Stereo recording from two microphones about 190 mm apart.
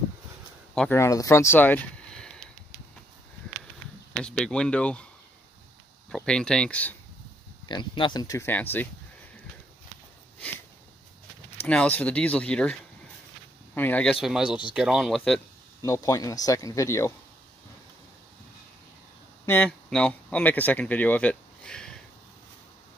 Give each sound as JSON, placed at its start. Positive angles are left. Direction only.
{"t": 0.7, "sound": "speech", "side_deg": 10}
{"t": 4.2, "sound": "speech", "side_deg": 5}
{"t": 6.0, "sound": "speech", "side_deg": 5}
{"t": 7.6, "sound": "speech", "side_deg": 25}
{"t": 11.6, "sound": "speech", "side_deg": 5}
{"t": 13.7, "sound": "speech", "side_deg": 10}
{"t": 14.2, "sound": "speech", "side_deg": -5}
{"t": 15.8, "sound": "speech", "side_deg": 15}
{"t": 19.4, "sound": "speech", "side_deg": 10}